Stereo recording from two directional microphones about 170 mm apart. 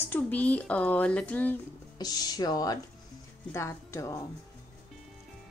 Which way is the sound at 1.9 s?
20° left (ahead or behind).